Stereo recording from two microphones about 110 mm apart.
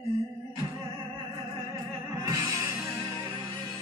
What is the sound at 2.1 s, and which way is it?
Music, 35° right (ahead or behind).